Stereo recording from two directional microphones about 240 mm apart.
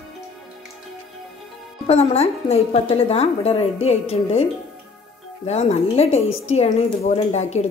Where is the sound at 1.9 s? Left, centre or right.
Left.